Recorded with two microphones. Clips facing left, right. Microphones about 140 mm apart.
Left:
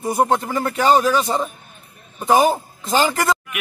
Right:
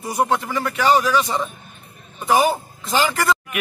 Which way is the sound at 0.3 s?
50° left (ahead or behind).